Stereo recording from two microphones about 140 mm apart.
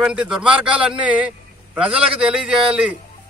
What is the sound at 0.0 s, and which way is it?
A man's voice, 5° right (ahead or behind).